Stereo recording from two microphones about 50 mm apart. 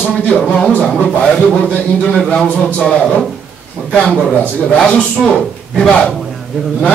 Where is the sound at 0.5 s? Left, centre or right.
Left.